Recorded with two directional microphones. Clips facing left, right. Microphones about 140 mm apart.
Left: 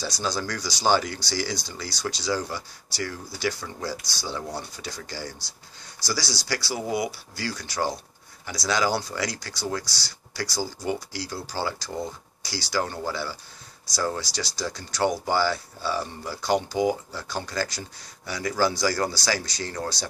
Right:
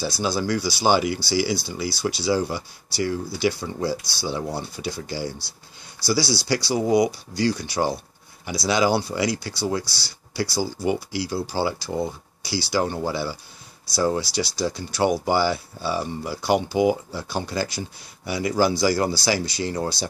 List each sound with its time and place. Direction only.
0.2 s speech: 10° right (ahead or behind)
6.0 s speech: 15° left (ahead or behind)
6.4 s speech: 20° right (ahead or behind)